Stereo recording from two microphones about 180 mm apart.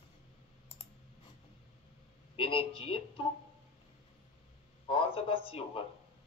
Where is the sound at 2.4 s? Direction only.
30° left (ahead or behind).